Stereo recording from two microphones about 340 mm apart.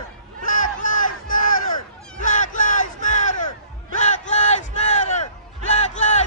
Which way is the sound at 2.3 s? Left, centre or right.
Left.